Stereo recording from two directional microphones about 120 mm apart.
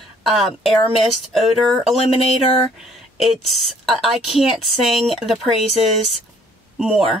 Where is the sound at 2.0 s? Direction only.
55° left (ahead or behind).